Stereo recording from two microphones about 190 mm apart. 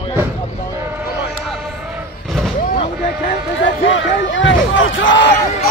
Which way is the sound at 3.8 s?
80° left.